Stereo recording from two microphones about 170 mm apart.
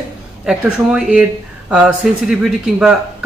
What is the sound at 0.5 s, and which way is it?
Speech, 5° right (ahead or behind).